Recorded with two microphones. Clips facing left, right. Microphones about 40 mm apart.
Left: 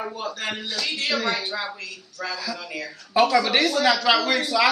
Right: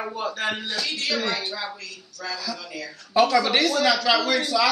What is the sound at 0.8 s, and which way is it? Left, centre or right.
Speech, left.